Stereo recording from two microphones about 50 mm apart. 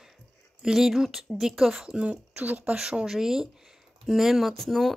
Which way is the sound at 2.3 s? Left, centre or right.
Right.